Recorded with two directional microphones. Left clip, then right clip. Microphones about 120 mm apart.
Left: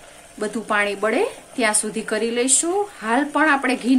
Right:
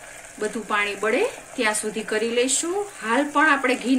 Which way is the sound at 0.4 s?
90° left.